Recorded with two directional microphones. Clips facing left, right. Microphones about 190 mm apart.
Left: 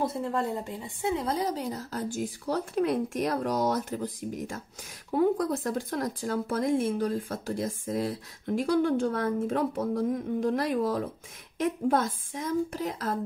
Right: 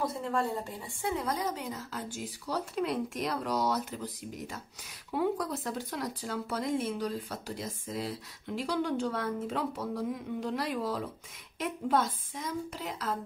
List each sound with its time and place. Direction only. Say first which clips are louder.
0.0 s speech: left 3 dB; 25° left (ahead or behind); by 11.1 s 50° left (ahead or behind)
12.4 s speech: left 8 dB; 45° left (ahead or behind)